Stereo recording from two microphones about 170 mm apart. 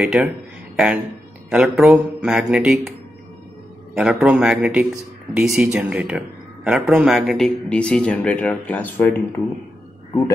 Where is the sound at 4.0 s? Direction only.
5° right (ahead or behind).